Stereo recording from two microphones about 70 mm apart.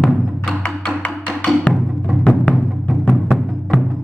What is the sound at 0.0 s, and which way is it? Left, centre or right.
Music, centre.